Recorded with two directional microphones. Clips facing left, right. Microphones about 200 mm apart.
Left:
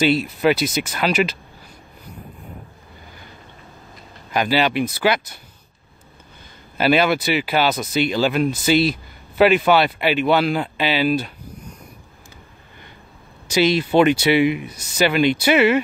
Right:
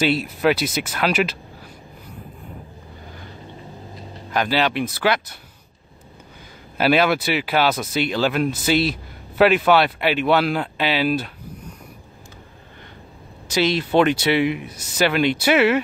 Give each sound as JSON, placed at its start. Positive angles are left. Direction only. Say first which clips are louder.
{"t": 0.0, "sound": "speech", "louder": "left 2 dB", "side_deg": -5}
{"t": 4.3, "sound": "speech", "louder": "left 2 dB", "side_deg": 5}
{"t": 6.8, "sound": "speech", "louder": "left 1 dB", "side_deg": 0}
{"t": 13.5, "sound": "speech", "louder": "left 2 dB", "side_deg": 0}